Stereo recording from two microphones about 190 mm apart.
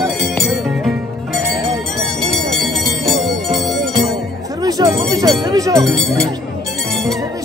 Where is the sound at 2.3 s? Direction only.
Centre (ahead or behind).